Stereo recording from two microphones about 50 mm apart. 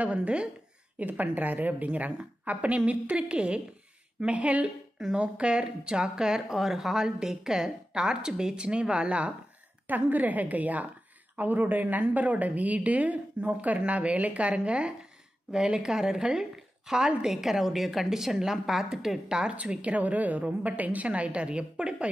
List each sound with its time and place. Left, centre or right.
0.0 s a woman's voice: right
0.9 s a woman's voice: right
9.8 s a woman's voice: right; by 19.5 s centre
19.5 s a woman's voice: right